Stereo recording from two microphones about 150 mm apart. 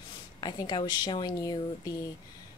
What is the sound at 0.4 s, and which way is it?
Speech, 30° left (ahead or behind).